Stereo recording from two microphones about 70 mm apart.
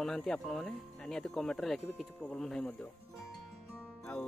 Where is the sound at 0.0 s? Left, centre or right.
Centre.